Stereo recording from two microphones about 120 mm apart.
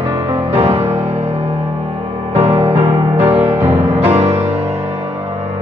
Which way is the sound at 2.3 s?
60° right (ahead or behind).